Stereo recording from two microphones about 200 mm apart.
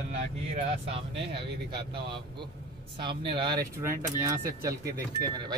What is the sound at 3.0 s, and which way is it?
Speech, 25° right (ahead or behind).